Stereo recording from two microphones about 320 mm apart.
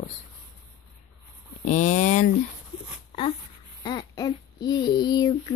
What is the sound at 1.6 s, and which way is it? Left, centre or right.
Speech, left.